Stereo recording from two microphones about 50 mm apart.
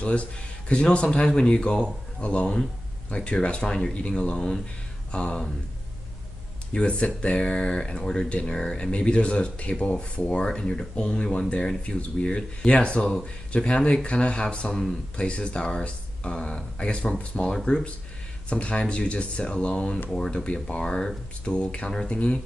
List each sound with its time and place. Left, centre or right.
0.0 s speech: left
6.7 s speech: left
18.5 s speech: left